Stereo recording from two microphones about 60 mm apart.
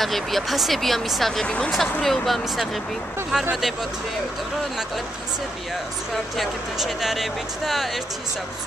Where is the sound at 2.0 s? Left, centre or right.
Centre.